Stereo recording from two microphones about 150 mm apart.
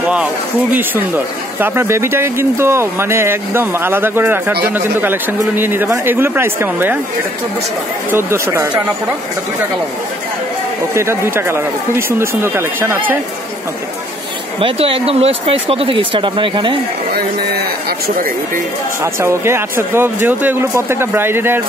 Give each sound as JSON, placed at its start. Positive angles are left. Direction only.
{"t": 0.1, "sound": "speech", "side_deg": -10}
{"t": 8.1, "sound": "speech", "side_deg": -15}
{"t": 11.0, "sound": "speech", "side_deg": -15}
{"t": 14.6, "sound": "speech", "side_deg": -40}
{"t": 17.8, "sound": "speech", "side_deg": -90}
{"t": 19.1, "sound": "speech", "side_deg": -15}